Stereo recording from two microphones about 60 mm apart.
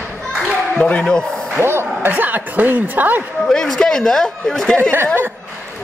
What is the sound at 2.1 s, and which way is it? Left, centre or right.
Speech, right.